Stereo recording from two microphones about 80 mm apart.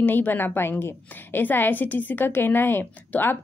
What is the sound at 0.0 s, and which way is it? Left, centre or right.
A woman's voice, left.